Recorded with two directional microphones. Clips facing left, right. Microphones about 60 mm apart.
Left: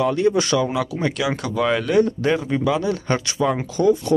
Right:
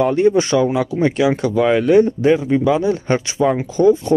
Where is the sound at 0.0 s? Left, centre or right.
Right.